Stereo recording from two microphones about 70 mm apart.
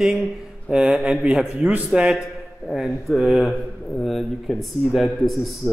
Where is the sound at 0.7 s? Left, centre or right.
Centre.